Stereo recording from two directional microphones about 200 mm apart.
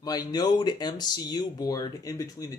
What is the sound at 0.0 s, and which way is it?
Speech, 20° left (ahead or behind).